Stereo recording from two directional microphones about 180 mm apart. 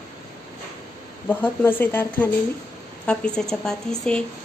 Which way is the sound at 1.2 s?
10° left (ahead or behind).